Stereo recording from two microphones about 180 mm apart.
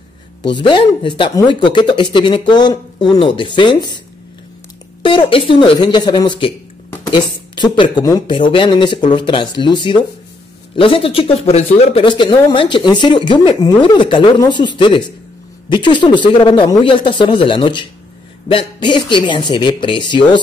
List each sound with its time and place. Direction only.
0.4 s speech: 25° left (ahead or behind)
5.0 s speech: 30° left (ahead or behind)